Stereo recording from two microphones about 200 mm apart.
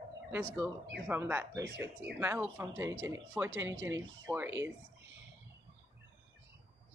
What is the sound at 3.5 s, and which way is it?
Speech, 70° right (ahead or behind).